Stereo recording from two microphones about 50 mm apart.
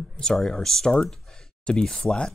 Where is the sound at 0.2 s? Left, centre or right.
Centre.